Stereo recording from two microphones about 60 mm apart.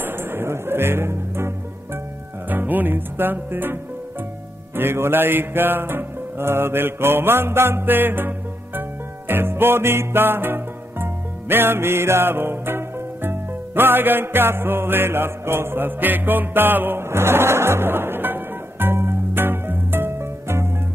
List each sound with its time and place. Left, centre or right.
0.0 s speech: right
2.5 s music: right